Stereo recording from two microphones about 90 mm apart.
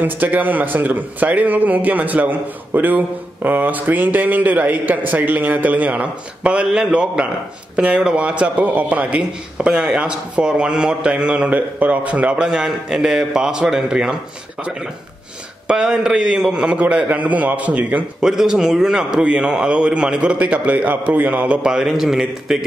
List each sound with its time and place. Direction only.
0.0 s a man's voice: 20° right (ahead or behind)
15.6 s a man's voice: 10° right (ahead or behind)
18.3 s a man's voice: 5° right (ahead or behind)